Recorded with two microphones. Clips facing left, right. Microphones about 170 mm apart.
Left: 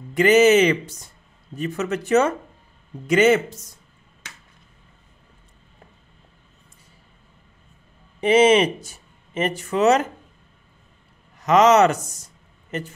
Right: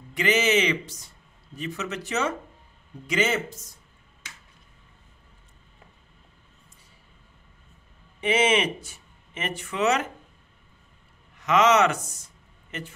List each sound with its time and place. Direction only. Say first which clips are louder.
0.1 s a man's voice: left 9 dB; 50° left (ahead or behind)
8.2 s speech: left 8 dB; 35° left (ahead or behind)
11.3 s speech: left 5 dB; 40° left (ahead or behind)